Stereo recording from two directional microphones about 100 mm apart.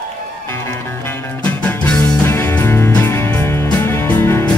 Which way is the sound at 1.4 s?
15° left (ahead or behind).